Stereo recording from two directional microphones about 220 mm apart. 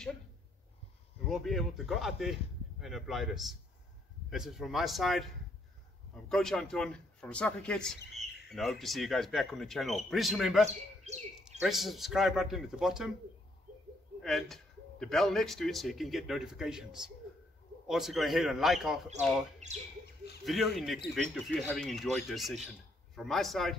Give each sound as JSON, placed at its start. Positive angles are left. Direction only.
{"t": 1.3, "sound": "a man's voice", "side_deg": 0}
{"t": 11.6, "sound": "a man's voice", "side_deg": 0}
{"t": 14.2, "sound": "a man's voice", "side_deg": 0}
{"t": 20.4, "sound": "a man's voice", "side_deg": 0}